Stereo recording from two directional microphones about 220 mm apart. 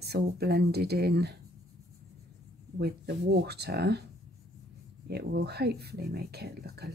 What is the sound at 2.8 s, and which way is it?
Speech, 50° right (ahead or behind).